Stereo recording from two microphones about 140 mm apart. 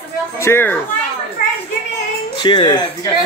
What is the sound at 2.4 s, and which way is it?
Speech, 30° left (ahead or behind).